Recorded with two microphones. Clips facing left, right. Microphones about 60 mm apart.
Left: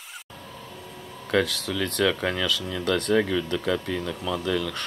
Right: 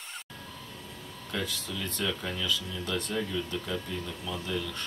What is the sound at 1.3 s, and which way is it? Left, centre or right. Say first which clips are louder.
Speech: left 10 dB; left.